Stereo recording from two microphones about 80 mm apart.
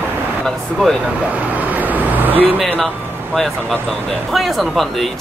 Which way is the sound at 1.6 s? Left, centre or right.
Right.